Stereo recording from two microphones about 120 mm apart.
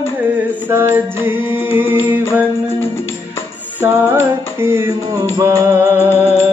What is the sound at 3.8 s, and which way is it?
Music, 20° right (ahead or behind).